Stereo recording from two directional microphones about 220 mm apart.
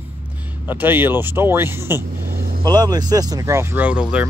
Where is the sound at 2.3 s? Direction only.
40° right (ahead or behind).